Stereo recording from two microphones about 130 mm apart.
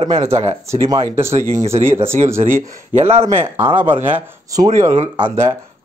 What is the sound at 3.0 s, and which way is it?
Speech, 55° right (ahead or behind).